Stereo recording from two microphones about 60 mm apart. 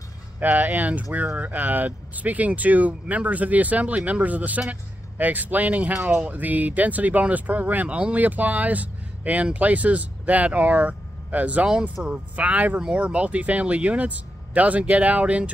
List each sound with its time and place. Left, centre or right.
0.4 s speech: right